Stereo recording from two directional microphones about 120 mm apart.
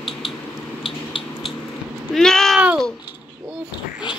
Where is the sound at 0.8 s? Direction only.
45° left (ahead or behind).